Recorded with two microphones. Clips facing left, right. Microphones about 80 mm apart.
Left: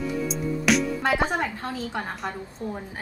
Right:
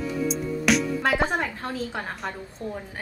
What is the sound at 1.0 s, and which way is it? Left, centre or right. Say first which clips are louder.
Speech: even; centre.